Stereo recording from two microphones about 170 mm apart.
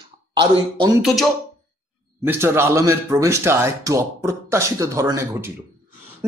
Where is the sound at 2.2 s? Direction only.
15° right (ahead or behind).